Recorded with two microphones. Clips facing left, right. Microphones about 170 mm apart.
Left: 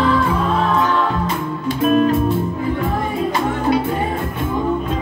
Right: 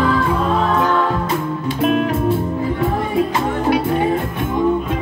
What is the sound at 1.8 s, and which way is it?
Music, 70° right (ahead or behind).